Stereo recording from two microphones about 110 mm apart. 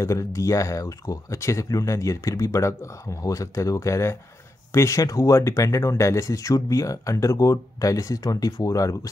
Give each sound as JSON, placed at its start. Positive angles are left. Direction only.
{"t": 0.0, "sound": "speech", "side_deg": 30}